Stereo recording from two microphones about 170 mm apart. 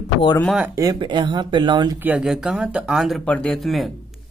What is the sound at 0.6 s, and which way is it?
Speech, 20° right (ahead or behind).